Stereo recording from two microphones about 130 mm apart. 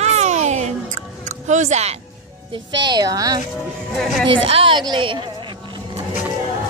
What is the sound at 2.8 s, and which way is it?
Speech, 35° right (ahead or behind).